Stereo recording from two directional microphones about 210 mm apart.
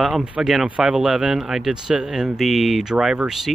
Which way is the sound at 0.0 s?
Centre (ahead or behind).